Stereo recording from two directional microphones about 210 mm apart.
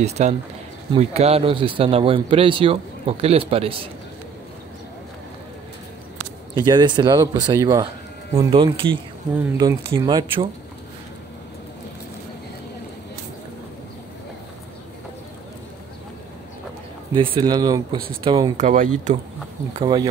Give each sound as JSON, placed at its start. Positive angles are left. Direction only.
{"t": 0.0, "sound": "speech", "side_deg": -30}
{"t": 6.5, "sound": "speech", "side_deg": -20}
{"t": 17.1, "sound": "speech", "side_deg": -25}
{"t": 19.7, "sound": "speech", "side_deg": -25}